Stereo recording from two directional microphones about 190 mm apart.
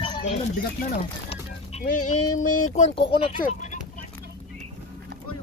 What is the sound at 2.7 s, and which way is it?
Speech, 35° left (ahead or behind).